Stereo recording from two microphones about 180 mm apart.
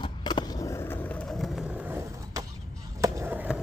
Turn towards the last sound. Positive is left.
turn(degrees=-10)  # may be behind; listen again after turning